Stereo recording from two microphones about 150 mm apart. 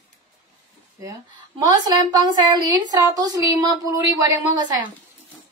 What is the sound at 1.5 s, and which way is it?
Speech, 35° right (ahead or behind).